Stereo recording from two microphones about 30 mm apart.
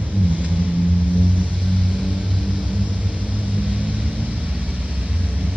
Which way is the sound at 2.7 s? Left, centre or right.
Right.